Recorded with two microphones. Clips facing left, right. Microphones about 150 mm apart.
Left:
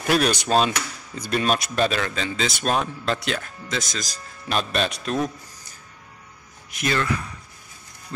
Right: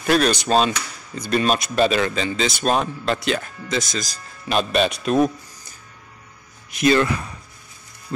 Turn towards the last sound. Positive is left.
turn(degrees=-25)  # may be behind; listen again after turning